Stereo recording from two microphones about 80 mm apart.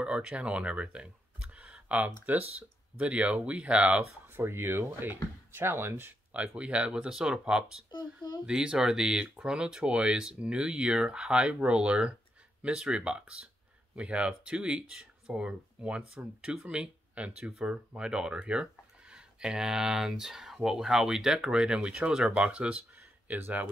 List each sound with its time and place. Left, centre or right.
0.0 s a sound: centre
2.3 s speech: right
4.3 s speech: right
6.3 s speech: centre